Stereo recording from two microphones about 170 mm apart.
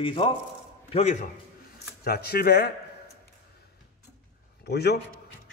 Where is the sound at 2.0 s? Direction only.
65° left (ahead or behind).